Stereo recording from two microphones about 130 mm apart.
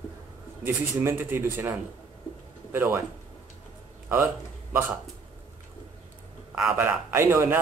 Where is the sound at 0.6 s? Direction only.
15° right (ahead or behind).